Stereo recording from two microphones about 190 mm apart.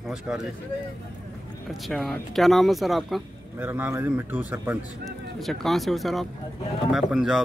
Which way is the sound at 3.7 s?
10° right (ahead or behind).